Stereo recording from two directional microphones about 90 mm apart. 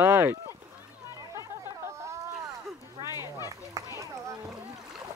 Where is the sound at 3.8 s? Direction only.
40° right (ahead or behind).